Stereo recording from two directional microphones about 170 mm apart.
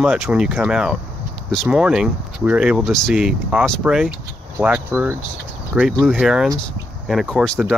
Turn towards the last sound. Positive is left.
turn(degrees=5)  # may be behind; listen again after turning